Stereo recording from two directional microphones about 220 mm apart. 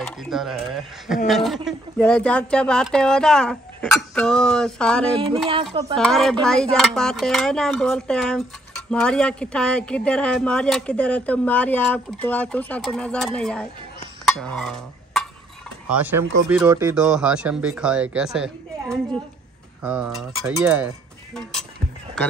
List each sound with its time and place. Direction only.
0.0 s speech: centre (ahead or behind)
5.1 s a sound: 25° right (ahead or behind)
5.9 s speech: centre (ahead or behind)
16.9 s speech: centre (ahead or behind)